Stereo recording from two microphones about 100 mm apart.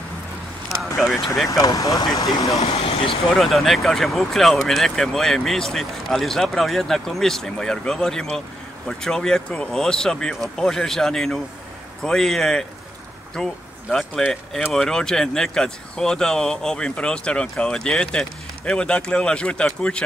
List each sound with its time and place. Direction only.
0.7 s vehicle: centre (ahead or behind)
1.5 s speech: 35° left (ahead or behind)
2.7 s speech: 65° left (ahead or behind)
3.3 s speech: centre (ahead or behind)